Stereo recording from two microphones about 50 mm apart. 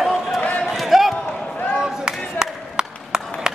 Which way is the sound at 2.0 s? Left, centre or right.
Centre.